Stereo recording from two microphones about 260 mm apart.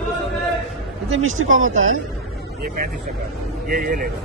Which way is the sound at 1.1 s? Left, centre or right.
Right.